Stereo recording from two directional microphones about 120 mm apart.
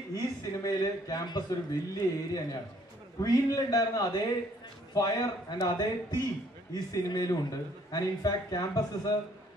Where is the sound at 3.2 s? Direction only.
30° left (ahead or behind).